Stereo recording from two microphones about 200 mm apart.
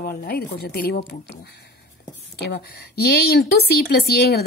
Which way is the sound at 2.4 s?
55° left (ahead or behind).